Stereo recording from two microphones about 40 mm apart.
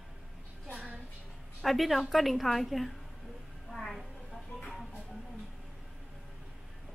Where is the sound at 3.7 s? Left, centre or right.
Centre.